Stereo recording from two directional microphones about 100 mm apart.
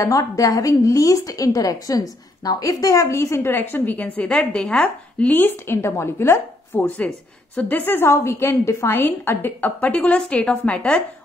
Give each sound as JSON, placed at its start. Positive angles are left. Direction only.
{"t": 0.0, "sound": "a woman's voice", "side_deg": 35}
{"t": 7.0, "sound": "a woman's voice", "side_deg": 10}